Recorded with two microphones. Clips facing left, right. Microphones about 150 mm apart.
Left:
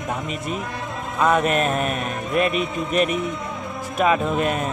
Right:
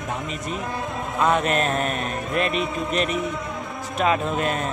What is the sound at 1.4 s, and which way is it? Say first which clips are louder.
Speech: left 2 dB; 35° right (ahead or behind).